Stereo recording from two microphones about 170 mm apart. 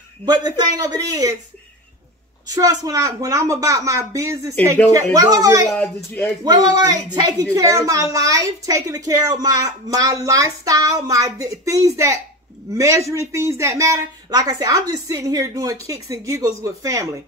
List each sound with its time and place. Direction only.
0.2 s a woman's voice: 25° right (ahead or behind)
2.4 s a woman's voice: 20° right (ahead or behind)